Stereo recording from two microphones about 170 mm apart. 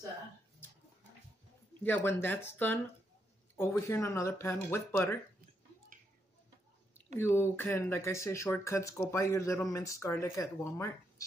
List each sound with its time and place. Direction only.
1.8 s speech: 10° left (ahead or behind)
7.2 s speech: 15° left (ahead or behind)